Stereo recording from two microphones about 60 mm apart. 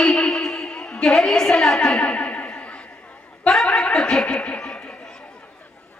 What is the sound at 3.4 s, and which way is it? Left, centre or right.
Chuckle, centre.